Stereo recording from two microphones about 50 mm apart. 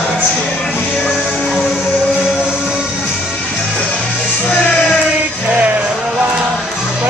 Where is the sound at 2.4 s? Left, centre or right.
Centre.